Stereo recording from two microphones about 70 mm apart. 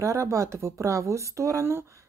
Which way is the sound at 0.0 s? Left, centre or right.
Right.